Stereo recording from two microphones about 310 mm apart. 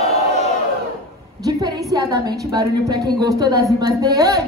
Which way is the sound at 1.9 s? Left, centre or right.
Centre.